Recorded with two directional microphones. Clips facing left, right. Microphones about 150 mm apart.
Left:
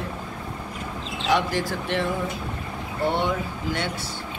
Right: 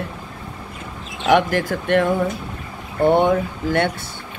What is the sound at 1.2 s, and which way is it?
Speech, 55° right (ahead or behind).